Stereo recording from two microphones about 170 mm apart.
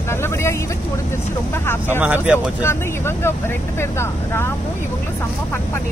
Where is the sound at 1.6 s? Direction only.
15° left (ahead or behind).